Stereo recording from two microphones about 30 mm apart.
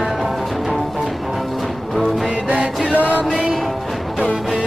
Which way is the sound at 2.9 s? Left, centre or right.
Right.